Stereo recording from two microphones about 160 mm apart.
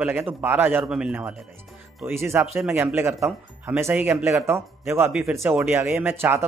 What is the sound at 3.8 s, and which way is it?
A man's voice, 15° right (ahead or behind).